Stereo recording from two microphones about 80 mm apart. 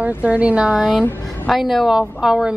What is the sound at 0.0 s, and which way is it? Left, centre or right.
Speech, centre.